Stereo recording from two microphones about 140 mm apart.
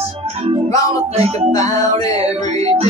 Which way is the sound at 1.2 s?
50° right (ahead or behind).